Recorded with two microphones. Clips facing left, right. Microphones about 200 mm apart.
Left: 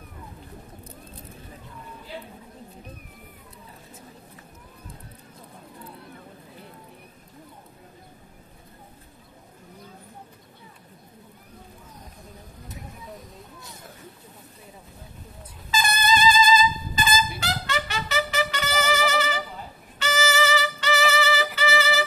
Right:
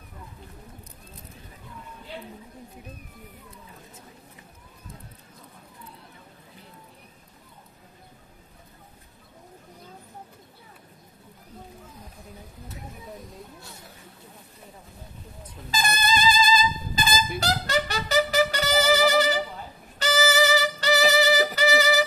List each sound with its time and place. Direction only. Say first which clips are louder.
15.7 s brass instrument: left 2 dB; 40° right (ahead or behind)
16.4 s music: left 3 dB; 35° right (ahead or behind)